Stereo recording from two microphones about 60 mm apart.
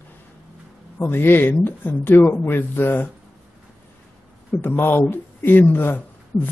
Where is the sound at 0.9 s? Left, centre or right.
Left.